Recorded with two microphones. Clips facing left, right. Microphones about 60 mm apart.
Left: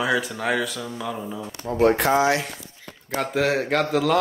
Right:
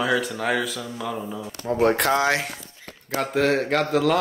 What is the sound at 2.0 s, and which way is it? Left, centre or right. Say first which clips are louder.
Speech: left 1 dB; right.